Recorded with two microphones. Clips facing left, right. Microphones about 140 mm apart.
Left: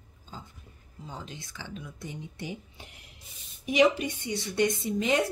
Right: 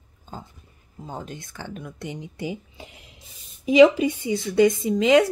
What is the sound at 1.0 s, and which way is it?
Speech, 50° right (ahead or behind).